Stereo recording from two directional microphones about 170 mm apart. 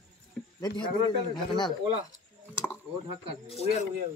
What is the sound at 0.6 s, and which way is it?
Speech, 25° left (ahead or behind).